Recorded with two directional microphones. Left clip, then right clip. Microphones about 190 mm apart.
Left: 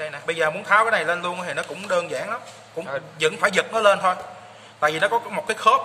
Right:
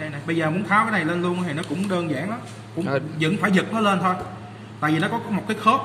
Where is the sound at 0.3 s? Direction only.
55° left (ahead or behind).